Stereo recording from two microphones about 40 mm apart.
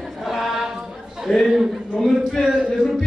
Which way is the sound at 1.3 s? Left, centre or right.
Centre.